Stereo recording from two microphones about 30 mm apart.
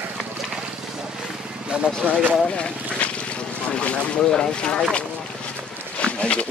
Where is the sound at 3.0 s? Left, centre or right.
Left.